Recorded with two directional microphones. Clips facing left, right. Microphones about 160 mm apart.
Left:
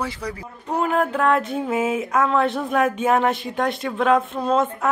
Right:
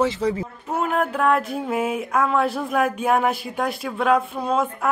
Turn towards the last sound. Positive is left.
turn(degrees=0)  # may be behind; listen again after turning